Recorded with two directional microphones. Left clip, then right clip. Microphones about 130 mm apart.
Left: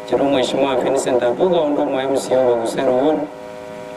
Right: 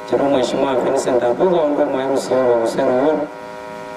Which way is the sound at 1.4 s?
45° right (ahead or behind).